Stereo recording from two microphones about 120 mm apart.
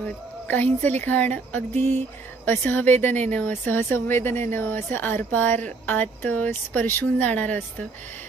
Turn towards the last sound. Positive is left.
turn(degrees=15)  # may be behind; listen again after turning